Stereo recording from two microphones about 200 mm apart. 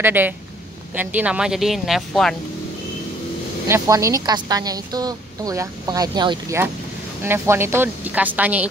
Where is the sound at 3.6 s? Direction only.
15° right (ahead or behind).